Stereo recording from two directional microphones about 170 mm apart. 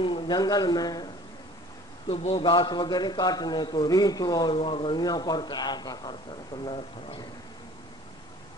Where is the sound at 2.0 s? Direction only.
35° left (ahead or behind).